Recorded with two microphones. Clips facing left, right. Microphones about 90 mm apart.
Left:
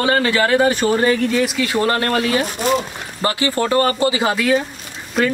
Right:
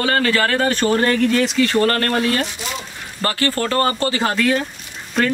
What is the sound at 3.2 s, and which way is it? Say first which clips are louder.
Speech: left 2 dB; 15° left (ahead or behind).